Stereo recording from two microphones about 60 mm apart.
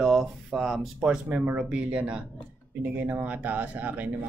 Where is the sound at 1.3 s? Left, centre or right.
Right.